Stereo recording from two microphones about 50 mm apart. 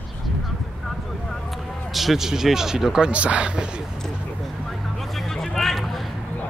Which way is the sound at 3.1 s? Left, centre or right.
Right.